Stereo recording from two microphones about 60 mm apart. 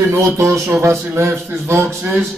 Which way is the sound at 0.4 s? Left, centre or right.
Right.